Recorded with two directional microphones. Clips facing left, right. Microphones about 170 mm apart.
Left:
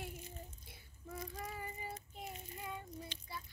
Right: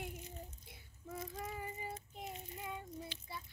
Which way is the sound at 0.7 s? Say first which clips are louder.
Right 1 dB; 25° right (ahead or behind).